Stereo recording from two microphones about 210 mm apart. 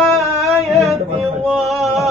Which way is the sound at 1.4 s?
Centre (ahead or behind).